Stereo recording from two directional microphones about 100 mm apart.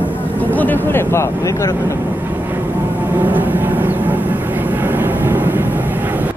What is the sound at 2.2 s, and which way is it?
Vehicle, 20° right (ahead or behind).